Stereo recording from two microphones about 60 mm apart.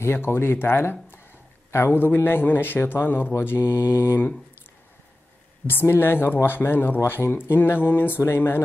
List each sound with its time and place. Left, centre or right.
0.0 s a man's voice: left
3.4 s mantra: left
5.7 s a man's voice: left